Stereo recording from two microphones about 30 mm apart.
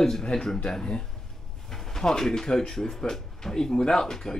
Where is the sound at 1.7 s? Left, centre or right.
Centre.